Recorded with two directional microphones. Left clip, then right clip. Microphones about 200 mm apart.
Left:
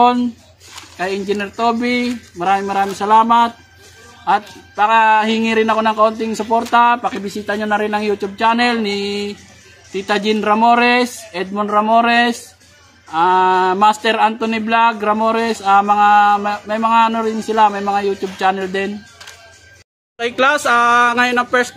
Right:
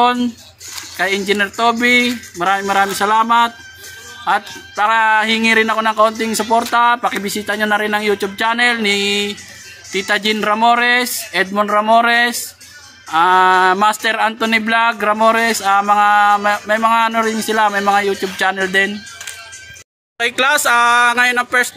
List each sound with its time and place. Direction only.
0.0 s speech: centre (ahead or behind)
20.2 s speech: centre (ahead or behind)